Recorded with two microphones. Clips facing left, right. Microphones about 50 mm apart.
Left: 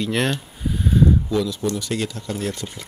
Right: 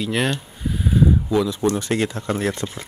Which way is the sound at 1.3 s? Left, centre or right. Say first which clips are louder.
Right 2 dB; centre.